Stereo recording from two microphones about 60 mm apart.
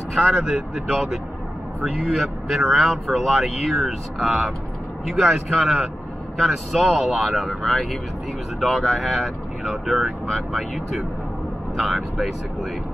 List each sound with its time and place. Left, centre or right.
0.1 s speech: centre